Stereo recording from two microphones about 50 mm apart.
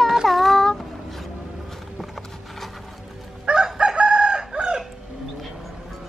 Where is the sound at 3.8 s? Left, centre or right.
Right.